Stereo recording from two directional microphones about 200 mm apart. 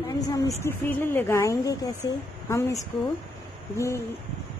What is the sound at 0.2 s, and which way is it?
A woman's voice, 15° left (ahead or behind).